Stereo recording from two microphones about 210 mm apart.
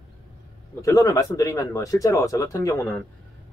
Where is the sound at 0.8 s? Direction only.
15° left (ahead or behind).